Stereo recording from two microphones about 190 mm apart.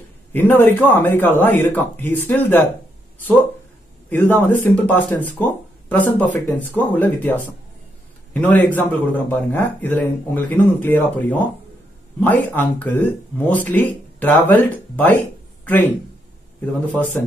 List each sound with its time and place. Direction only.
0.3 s speech: 10° left (ahead or behind)
4.1 s speech: 10° left (ahead or behind)
12.5 s speech: 10° left (ahead or behind)